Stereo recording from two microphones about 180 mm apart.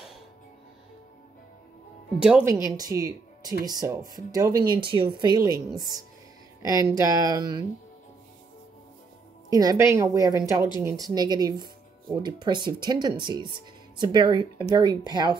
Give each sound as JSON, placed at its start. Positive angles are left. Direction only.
{"t": 2.2, "sound": "a woman's voice", "side_deg": -10}
{"t": 9.5, "sound": "speech", "side_deg": -20}